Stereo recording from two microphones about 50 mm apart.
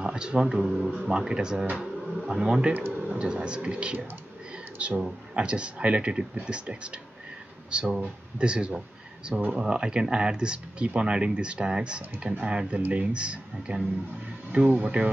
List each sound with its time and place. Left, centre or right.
0.0 s speech: centre